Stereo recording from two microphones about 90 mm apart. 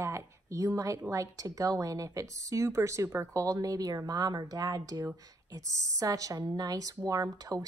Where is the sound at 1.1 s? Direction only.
40° right (ahead or behind).